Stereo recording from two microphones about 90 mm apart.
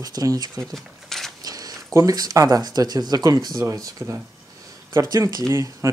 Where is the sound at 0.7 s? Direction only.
5° left (ahead or behind).